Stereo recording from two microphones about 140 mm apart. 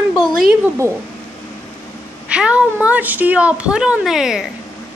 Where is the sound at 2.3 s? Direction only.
10° right (ahead or behind).